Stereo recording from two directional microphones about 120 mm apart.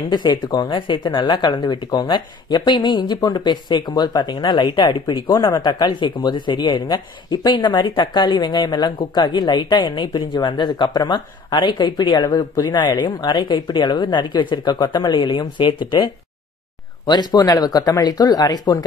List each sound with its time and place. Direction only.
0.1 s speech: 40° left (ahead or behind)